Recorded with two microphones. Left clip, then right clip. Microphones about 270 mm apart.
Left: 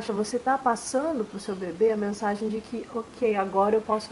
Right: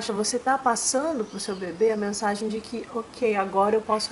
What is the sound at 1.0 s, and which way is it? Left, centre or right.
Speech, centre.